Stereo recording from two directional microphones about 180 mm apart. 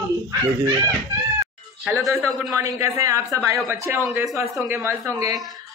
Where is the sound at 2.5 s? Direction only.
20° right (ahead or behind).